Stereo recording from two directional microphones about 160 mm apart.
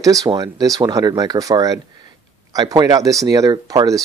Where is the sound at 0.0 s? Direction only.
20° right (ahead or behind).